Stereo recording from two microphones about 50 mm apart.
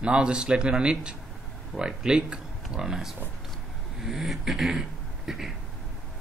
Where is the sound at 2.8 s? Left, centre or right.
Centre.